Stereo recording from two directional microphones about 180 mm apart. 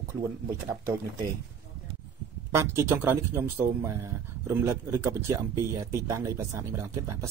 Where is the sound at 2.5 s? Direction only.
15° right (ahead or behind).